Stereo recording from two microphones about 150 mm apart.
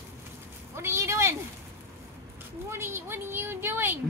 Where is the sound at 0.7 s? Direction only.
20° right (ahead or behind).